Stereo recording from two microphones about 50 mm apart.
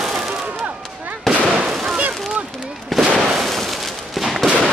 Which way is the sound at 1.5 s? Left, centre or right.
Right.